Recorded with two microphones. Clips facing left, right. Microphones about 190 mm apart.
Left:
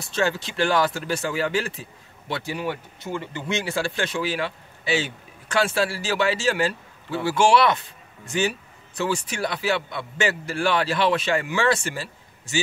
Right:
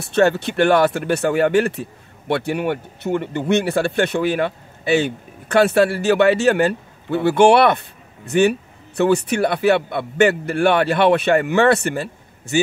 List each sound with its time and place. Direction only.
0.0 s speech: 60° right (ahead or behind)